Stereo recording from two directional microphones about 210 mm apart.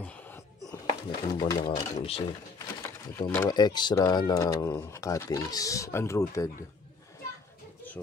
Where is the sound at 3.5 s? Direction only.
20° left (ahead or behind).